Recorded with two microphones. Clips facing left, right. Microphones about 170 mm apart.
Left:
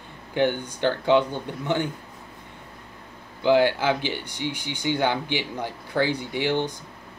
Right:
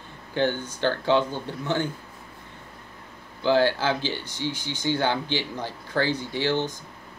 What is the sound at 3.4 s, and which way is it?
Speech, 15° left (ahead or behind).